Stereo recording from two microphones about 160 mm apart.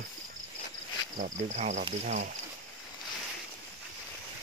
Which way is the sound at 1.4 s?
45° right (ahead or behind).